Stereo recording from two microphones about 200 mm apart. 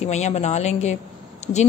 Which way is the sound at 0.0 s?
35° left (ahead or behind).